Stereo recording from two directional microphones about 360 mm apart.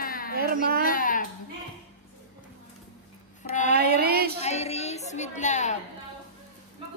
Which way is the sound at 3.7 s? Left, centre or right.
Right.